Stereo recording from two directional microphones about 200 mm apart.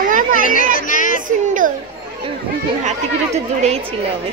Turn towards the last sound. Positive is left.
turn(degrees=-35)  # may be behind; listen again after turning